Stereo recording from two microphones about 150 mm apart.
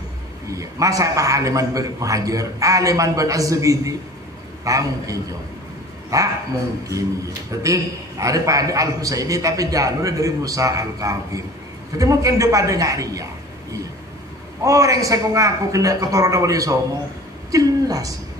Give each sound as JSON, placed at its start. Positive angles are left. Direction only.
{"t": 0.5, "sound": "a man's voice", "side_deg": -20}
{"t": 7.6, "sound": "a man's voice", "side_deg": -20}
{"t": 14.6, "sound": "a man's voice", "side_deg": -20}
{"t": 17.5, "sound": "a sound", "side_deg": -25}